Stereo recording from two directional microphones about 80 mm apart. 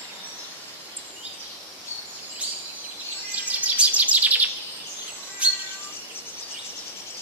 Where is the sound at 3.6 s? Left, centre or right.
Centre.